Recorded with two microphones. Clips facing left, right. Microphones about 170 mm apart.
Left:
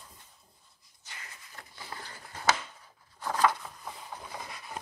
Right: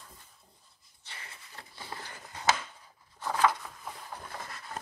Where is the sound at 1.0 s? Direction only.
30° right (ahead or behind).